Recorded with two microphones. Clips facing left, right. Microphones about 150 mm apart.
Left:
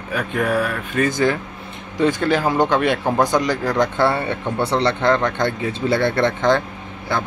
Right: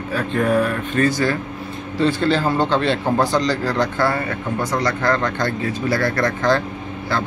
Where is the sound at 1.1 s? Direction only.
20° left (ahead or behind).